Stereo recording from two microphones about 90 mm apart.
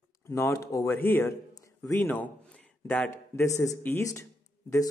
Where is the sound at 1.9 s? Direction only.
20° left (ahead or behind).